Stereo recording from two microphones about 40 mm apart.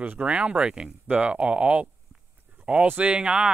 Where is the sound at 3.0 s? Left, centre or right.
Right.